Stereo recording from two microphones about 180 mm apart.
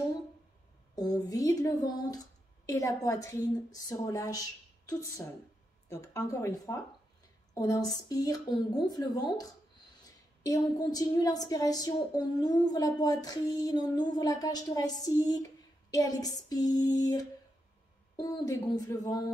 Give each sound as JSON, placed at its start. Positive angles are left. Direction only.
{"t": 0.9, "sound": "a woman's voice", "side_deg": 20}